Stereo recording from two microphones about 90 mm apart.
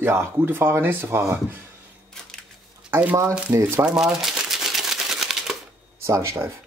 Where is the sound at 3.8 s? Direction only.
5° right (ahead or behind).